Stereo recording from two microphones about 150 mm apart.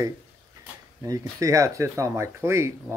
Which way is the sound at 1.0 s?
20° right (ahead or behind).